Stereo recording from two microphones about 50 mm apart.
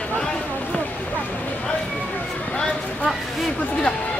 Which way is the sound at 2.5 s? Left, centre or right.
Left.